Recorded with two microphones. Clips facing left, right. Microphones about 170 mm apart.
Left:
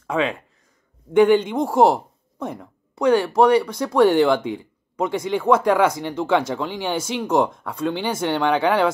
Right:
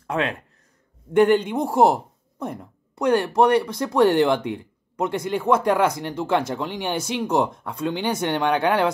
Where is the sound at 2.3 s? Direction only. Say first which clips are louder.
Left 1 dB; 10° right (ahead or behind).